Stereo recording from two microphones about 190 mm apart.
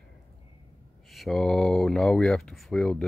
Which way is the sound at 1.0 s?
Centre (ahead or behind).